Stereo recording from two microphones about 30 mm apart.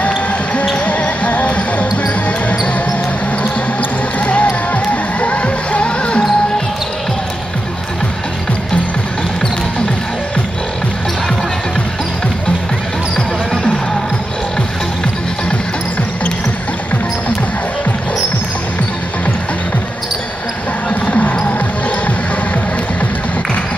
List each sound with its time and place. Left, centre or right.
0.7 s basketball bounce: left
4.2 s music: left
20.9 s basketball bounce: left